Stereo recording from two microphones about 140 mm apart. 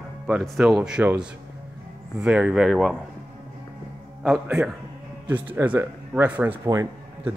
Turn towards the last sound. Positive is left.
turn(degrees=-20)  # may be behind; listen again after turning